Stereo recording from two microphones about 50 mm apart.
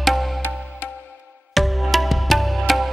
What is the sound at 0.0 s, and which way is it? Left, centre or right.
Music, centre.